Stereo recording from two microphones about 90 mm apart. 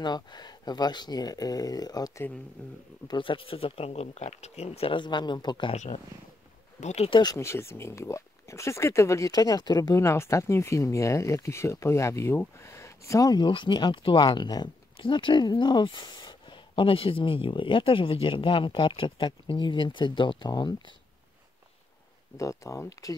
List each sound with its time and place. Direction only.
0.0 s speech: 50° left (ahead or behind)
3.1 s speech: 70° left (ahead or behind)
7.3 s speech: 30° left (ahead or behind); by 9.9 s 45° left (ahead or behind)
9.9 s speech: 30° left (ahead or behind)
13.5 s speech: 65° left (ahead or behind)
22.4 s speech: 35° left (ahead or behind)